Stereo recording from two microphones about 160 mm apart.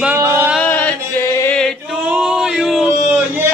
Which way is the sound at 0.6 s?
10° left (ahead or behind).